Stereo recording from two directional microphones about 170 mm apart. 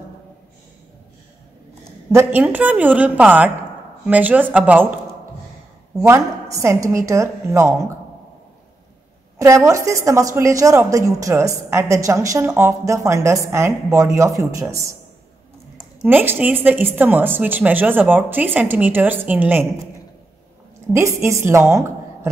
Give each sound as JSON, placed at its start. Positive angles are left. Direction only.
{"t": 2.1, "sound": "a woman's voice", "side_deg": -10}
{"t": 6.0, "sound": "a woman's voice", "side_deg": -15}
{"t": 9.4, "sound": "a woman's voice", "side_deg": -20}
{"t": 16.0, "sound": "a woman's voice", "side_deg": -10}
{"t": 20.8, "sound": "a woman's voice", "side_deg": -15}